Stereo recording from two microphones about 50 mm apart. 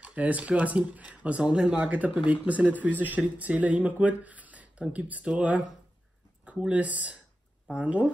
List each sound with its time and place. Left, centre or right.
0.0 s speech: right